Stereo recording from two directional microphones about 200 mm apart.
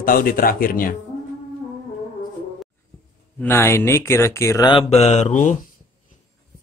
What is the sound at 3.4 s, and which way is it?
Speech, 10° left (ahead or behind).